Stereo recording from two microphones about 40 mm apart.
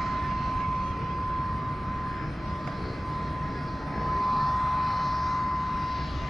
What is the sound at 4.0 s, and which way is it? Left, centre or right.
Vehicle, centre.